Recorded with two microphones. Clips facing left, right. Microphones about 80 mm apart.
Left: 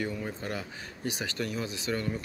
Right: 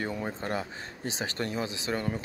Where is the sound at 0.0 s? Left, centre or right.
Right.